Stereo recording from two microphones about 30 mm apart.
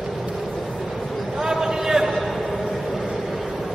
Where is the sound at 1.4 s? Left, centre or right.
Centre.